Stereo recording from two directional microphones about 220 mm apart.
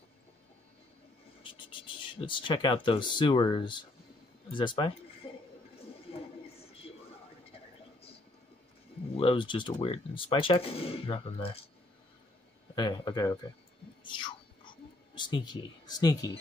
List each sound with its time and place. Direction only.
1.4 s speech: 20° left (ahead or behind)
9.1 s speech: 25° left (ahead or behind)
12.7 s speech: 20° left (ahead or behind)
14.0 s a sound: 20° left (ahead or behind)